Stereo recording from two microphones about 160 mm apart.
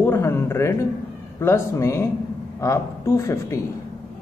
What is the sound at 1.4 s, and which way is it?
Speech, 15° left (ahead or behind).